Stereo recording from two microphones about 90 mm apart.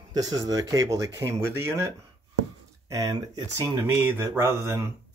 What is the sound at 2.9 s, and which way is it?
Speech, 40° right (ahead or behind).